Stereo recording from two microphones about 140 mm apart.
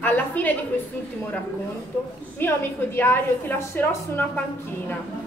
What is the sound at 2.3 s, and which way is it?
A woman's voice, 15° left (ahead or behind).